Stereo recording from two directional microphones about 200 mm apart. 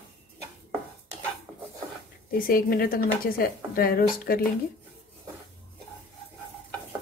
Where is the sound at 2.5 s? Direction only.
45° left (ahead or behind).